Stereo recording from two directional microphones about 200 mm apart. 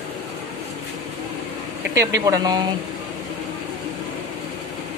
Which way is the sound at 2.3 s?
20° right (ahead or behind).